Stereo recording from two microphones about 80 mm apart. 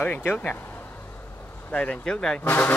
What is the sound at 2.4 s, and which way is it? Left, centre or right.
Speech, left.